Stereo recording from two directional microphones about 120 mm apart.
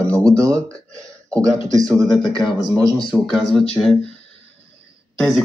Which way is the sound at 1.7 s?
30° right (ahead or behind).